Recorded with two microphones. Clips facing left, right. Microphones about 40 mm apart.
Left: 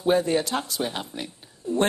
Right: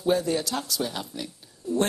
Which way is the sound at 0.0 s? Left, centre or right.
Left.